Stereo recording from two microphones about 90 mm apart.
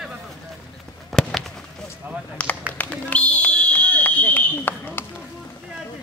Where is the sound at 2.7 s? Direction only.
15° left (ahead or behind).